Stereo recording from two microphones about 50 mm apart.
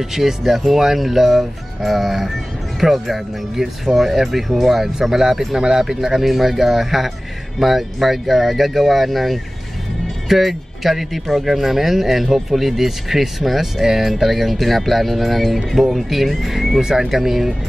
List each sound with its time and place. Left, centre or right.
0.1 s speech: centre